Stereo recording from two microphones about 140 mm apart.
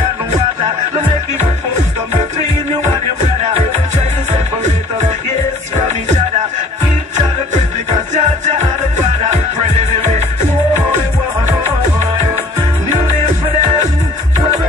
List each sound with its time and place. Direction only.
8.1 s music: 65° right (ahead or behind)